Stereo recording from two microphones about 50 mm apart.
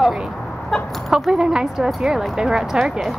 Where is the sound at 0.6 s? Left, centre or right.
Centre.